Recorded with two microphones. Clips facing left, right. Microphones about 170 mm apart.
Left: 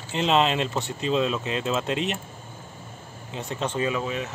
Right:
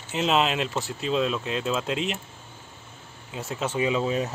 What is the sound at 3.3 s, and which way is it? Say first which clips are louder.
Speech: even; 5° right (ahead or behind).